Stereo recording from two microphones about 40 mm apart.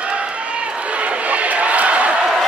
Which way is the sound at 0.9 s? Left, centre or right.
Right.